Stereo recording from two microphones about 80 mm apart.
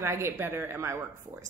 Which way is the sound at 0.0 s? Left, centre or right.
Right.